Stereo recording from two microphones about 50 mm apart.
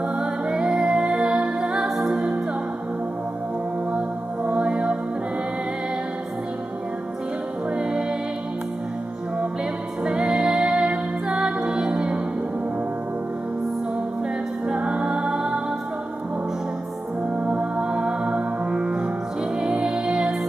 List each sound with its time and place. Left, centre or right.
0.1 s music: centre
2.0 s music: centre
4.5 s music: right
7.7 s music: centre
10.0 s music: centre
14.7 s music: centre
17.4 s music: right